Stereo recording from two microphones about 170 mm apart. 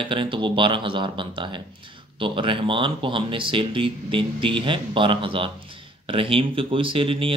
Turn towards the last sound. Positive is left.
turn(degrees=-30)  # may be behind; listen again after turning